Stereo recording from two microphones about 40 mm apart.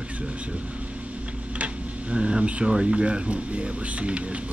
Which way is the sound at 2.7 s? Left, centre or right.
Right.